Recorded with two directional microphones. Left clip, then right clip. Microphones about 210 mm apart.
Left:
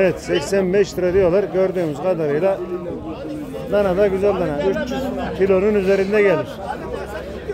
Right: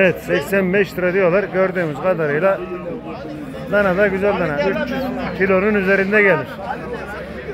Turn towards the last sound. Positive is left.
turn(degrees=0)  # may be behind; listen again after turning